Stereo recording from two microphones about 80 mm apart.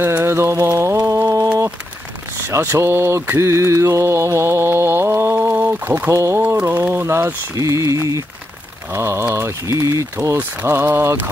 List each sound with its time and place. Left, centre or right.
0.0 s mantra: right
0.7 s speech: right
0.9 s a sound: right
2.4 s mantra: right
6.1 s mantra: right
6.4 s speech: right
7.5 s mantra: right
10.7 s speech: right